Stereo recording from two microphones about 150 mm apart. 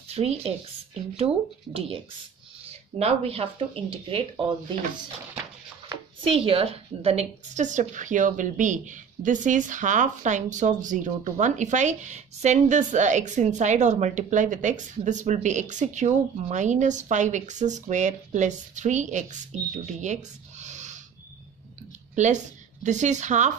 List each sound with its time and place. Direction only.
0.1 s a woman's voice: 45° right (ahead or behind)
3.0 s speech: 45° right (ahead or behind)
6.2 s a woman's voice: 40° right (ahead or behind)
22.1 s a woman's voice: 55° right (ahead or behind)